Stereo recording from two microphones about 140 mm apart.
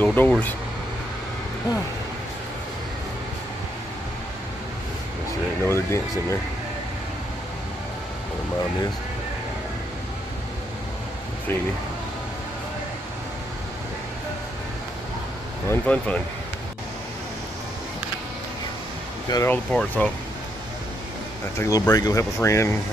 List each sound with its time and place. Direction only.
0.0 s speech: 10° left (ahead or behind)
5.7 s speech: 20° left (ahead or behind)
15.7 s speech: 10° left (ahead or behind)
19.2 s speech: 25° left (ahead or behind)
19.5 s speech: 10° left (ahead or behind)
21.5 s speech: 25° left (ahead or behind)